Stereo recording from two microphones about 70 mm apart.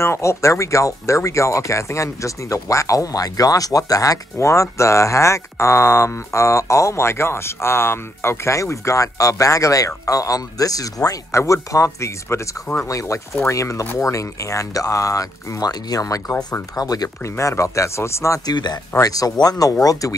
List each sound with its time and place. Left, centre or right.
0.0 s speech: left
17.2 s speech: left
18.4 s speech: left
18.9 s speech: left